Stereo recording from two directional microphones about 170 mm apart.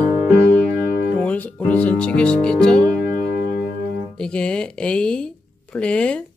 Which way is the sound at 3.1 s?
60° left (ahead or behind).